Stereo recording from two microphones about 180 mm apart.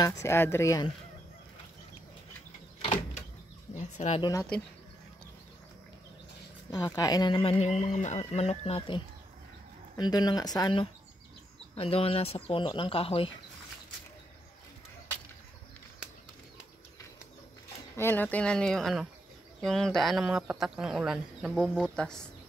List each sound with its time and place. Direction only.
0.0 s speech: 15° left (ahead or behind)
2.8 s door: 45° left (ahead or behind)
3.7 s speech: 40° left (ahead or behind)
4.2 s speech: 20° left (ahead or behind)
6.7 s speech: 20° left (ahead or behind)
17.9 s speech: 10° left (ahead or behind)